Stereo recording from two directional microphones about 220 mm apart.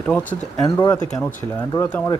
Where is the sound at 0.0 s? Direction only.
5° left (ahead or behind).